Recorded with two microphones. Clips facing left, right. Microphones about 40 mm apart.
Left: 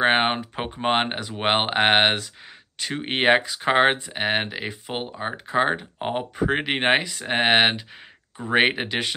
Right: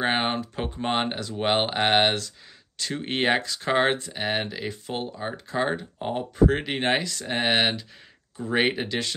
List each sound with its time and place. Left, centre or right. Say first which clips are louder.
0.0 s speech: left 5 dB; left
6.3 s speech: right 3 dB; left